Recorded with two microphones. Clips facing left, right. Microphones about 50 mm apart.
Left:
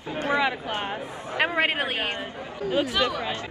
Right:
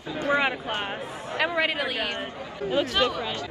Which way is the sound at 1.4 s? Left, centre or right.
Left.